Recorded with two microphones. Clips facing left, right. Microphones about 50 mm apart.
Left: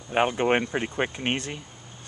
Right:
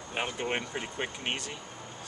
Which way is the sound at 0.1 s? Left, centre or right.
Left.